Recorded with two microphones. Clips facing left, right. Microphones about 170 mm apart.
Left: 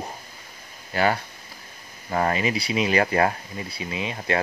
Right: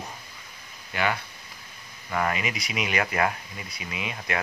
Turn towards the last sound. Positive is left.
turn(degrees=30)  # may be behind; listen again after turning